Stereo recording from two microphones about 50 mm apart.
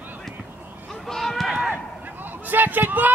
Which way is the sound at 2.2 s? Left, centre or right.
Right.